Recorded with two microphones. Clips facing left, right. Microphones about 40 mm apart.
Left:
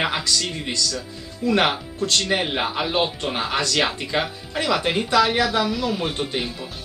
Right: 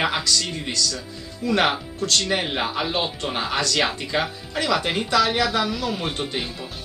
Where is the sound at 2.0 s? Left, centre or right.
Left.